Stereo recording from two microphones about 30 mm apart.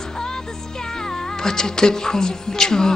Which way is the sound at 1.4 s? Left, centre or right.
Left.